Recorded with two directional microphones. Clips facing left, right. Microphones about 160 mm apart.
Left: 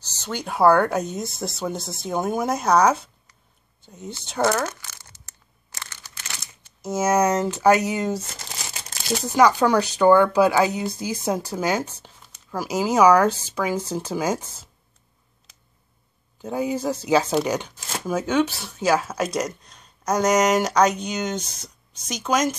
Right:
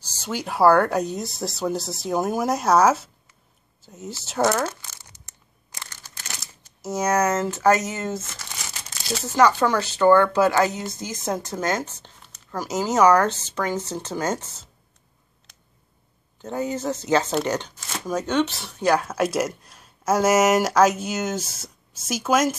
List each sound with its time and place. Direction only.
0.0 s speech: 10° right (ahead or behind)
4.8 s a sound: 20° right (ahead or behind)
5.9 s crumpling: 40° right (ahead or behind)
7.0 s speech: 10° left (ahead or behind)
8.2 s crumpling: 35° left (ahead or behind)
9.2 s speech: 15° left (ahead or behind)
16.3 s speech: 10° left (ahead or behind)